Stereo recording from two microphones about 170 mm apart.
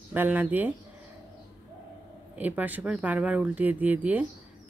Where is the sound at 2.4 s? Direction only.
10° right (ahead or behind).